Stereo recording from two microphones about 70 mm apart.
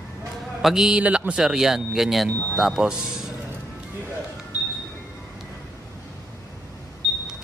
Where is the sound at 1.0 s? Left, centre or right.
Centre.